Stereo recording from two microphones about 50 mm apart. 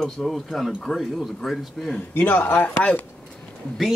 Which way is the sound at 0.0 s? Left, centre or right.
Centre.